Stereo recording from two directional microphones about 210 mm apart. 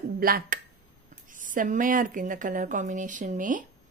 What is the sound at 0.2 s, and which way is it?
A woman's voice, 45° right (ahead or behind).